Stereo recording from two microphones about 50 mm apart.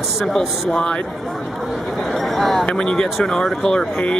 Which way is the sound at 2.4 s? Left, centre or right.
Centre.